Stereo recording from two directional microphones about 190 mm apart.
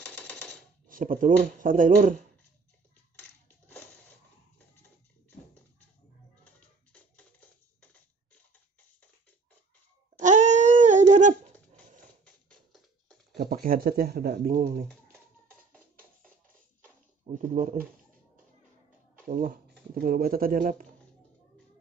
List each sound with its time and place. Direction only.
0.1 s typewriter: 5° left (ahead or behind)
0.8 s speech: 45° right (ahead or behind)
6.4 s music: 10° left (ahead or behind)
10.1 s goat: 40° right (ahead or behind)
13.4 s speech: 50° right (ahead or behind)
17.3 s speech: 45° right (ahead or behind)
19.2 s speech: 50° right (ahead or behind)